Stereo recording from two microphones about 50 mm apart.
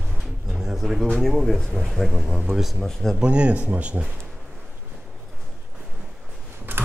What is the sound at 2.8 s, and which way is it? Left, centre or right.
Speech, centre.